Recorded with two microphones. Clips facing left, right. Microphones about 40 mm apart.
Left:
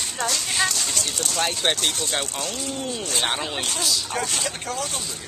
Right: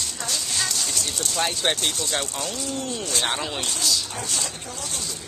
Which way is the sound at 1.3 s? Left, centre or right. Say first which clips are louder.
Even; centre.